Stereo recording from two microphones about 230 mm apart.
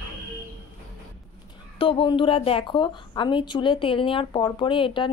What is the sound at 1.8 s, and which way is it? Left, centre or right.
A woman's voice, left.